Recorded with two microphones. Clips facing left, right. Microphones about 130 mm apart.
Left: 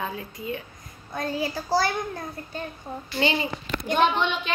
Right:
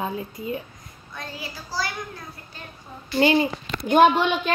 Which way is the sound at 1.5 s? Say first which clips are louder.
Left 5 dB; 55° left (ahead or behind).